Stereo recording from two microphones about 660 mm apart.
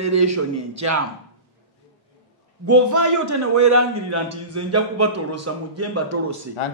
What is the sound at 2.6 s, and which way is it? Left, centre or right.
A man's voice, right.